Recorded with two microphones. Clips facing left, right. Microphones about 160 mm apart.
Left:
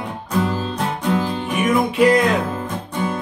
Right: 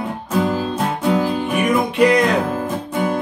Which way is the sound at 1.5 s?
Centre (ahead or behind).